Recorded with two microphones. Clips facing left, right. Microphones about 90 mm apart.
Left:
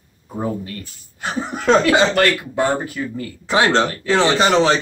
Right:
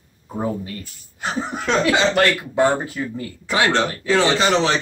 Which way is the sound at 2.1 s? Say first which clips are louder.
Even; 20° right (ahead or behind).